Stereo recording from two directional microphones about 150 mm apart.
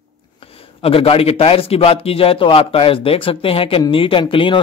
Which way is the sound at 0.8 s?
40° left (ahead or behind).